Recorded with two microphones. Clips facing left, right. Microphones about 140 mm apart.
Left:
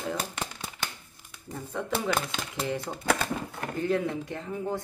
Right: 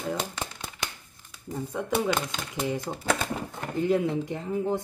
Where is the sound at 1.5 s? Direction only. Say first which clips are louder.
Right 4 dB; 10° right (ahead or behind).